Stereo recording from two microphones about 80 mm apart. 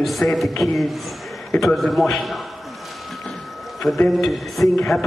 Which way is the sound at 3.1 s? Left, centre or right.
Centre.